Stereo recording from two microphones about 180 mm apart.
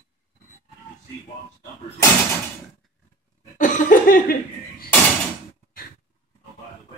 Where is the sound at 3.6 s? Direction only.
45° left (ahead or behind).